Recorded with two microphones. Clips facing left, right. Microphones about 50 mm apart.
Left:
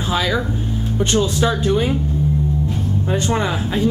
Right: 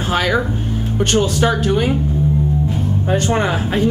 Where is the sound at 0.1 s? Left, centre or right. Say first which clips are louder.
Right 3 dB; right.